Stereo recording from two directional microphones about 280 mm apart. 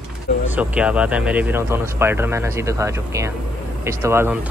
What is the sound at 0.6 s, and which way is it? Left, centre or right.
Speech, centre.